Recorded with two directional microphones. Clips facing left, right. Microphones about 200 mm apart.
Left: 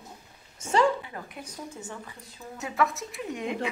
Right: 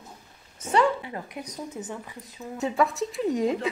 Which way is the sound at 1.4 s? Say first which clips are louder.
Right 4 dB; 20° right (ahead or behind).